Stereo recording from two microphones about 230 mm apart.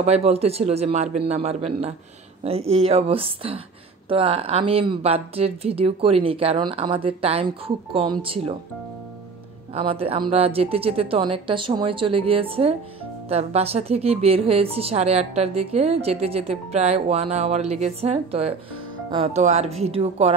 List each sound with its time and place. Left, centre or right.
0.0 s a woman's voice: right
9.8 s a woman's voice: right